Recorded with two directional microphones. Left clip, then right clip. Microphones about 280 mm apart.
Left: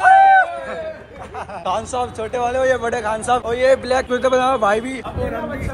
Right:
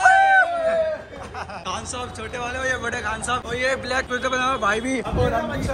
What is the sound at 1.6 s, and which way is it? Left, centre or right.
Speech, centre.